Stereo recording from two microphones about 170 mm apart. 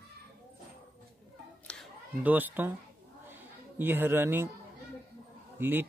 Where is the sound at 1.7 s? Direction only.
5° left (ahead or behind).